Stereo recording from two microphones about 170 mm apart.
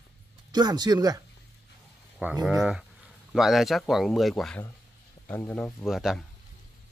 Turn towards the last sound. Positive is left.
turn(degrees=0)  # may be behind; listen again after turning